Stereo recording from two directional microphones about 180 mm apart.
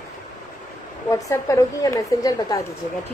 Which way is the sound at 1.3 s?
20° left (ahead or behind).